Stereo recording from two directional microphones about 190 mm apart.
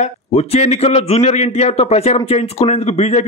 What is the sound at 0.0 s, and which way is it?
A man's voice, 35° left (ahead or behind).